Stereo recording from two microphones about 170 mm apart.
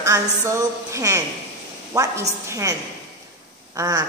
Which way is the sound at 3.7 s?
20° right (ahead or behind).